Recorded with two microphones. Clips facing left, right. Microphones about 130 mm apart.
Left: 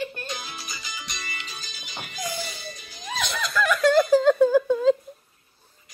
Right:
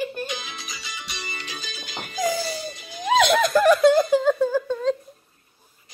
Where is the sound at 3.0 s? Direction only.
75° right (ahead or behind).